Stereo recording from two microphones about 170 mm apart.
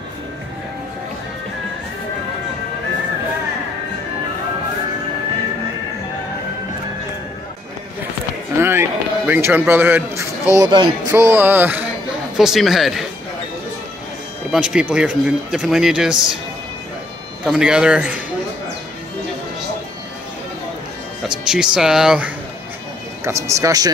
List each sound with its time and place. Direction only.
8.5 s music: 15° right (ahead or behind)
10.6 s speech: 25° right (ahead or behind)
11.1 s music: 10° right (ahead or behind)
12.4 s speech: centre (ahead or behind)
14.5 s speech: 5° right (ahead or behind)
17.5 s speech: 5° right (ahead or behind)
21.2 s music: 5° right (ahead or behind)
21.7 s speech: 5° right (ahead or behind)
23.2 s music: 15° right (ahead or behind)